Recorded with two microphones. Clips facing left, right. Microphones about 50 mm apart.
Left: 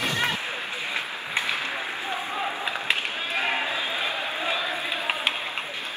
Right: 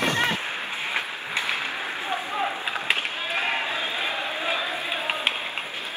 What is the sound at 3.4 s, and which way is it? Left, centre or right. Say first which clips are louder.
Run: left 1 dB; centre.